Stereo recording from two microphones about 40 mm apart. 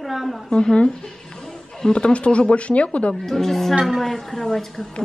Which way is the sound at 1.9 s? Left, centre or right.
Left.